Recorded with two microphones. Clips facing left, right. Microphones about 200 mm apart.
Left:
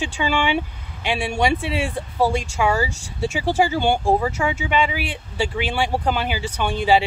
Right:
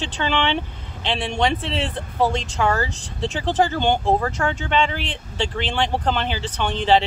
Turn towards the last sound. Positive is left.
turn(degrees=10)  # may be behind; listen again after turning